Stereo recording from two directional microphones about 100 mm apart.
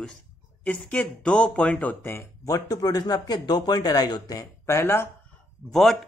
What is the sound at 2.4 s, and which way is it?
A man's voice, 40° left (ahead or behind).